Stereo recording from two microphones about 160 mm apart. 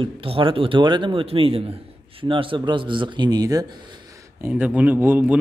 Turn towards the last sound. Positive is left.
turn(degrees=-10)  # may be behind; listen again after turning